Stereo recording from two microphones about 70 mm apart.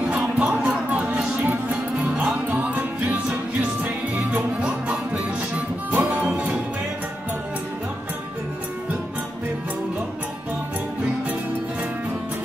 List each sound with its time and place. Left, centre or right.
0.0 s music: centre; by 6.3 s right